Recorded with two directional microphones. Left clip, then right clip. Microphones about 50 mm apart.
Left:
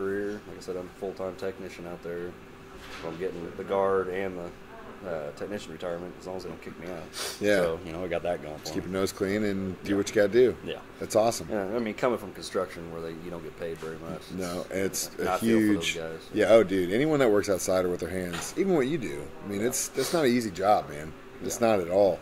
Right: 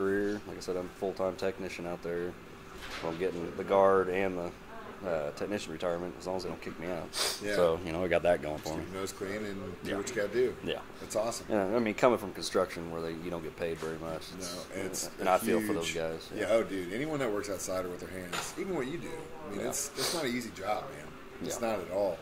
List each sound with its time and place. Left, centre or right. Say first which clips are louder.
0.0 s speech: even; right
8.6 s speech: left 7 dB; left
11.5 s speech: even; right
14.7 s speech: left 7 dB; left
15.2 s speech: even; right
15.5 s speech: left 6 dB; left